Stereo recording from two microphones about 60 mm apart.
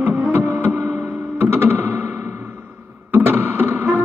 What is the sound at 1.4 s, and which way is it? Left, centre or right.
Music, right.